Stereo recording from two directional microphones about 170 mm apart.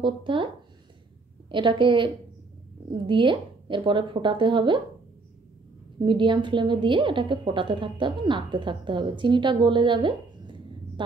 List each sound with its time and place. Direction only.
0.0 s a woman's voice: 30° right (ahead or behind)
1.5 s a woman's voice: 30° right (ahead or behind)
5.9 s a woman's voice: 30° right (ahead or behind)